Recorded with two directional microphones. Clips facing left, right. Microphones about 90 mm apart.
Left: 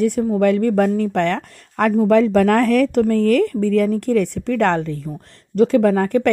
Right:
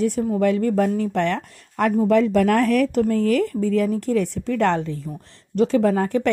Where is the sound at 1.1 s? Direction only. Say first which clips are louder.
Left 3 dB; 85° left.